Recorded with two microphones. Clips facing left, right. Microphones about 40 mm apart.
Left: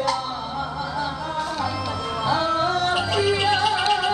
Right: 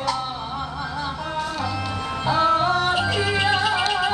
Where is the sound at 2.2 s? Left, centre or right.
Right.